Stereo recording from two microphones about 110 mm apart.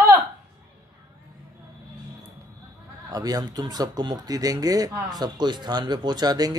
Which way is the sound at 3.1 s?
35° right (ahead or behind).